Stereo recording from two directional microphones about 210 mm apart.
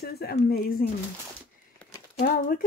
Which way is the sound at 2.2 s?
45° left (ahead or behind).